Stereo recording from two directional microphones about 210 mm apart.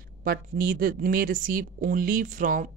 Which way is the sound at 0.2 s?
40° right (ahead or behind).